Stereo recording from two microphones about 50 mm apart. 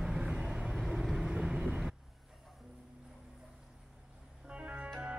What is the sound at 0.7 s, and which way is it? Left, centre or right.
Vehicle, centre.